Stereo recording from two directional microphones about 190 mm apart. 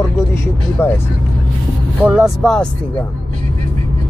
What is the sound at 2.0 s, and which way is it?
Speech, 5° right (ahead or behind).